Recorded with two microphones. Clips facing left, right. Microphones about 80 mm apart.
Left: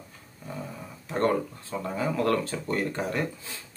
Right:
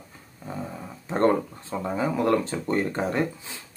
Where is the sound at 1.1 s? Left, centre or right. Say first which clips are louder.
Right 4 dB; right.